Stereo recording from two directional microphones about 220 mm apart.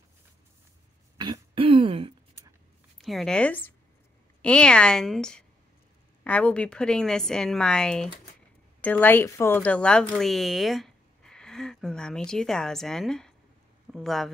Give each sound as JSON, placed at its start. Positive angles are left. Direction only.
{"t": 1.1, "sound": "throat clearing", "side_deg": -20}
{"t": 3.0, "sound": "a woman's voice", "side_deg": 0}